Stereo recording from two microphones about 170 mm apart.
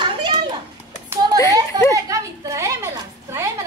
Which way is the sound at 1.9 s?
20° right (ahead or behind).